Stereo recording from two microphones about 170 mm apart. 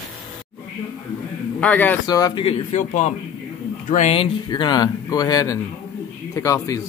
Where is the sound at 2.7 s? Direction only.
45° left (ahead or behind).